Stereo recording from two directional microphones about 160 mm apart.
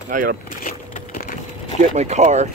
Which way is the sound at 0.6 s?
60° left (ahead or behind).